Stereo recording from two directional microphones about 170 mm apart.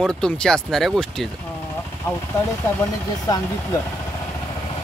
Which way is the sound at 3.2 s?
20° left (ahead or behind).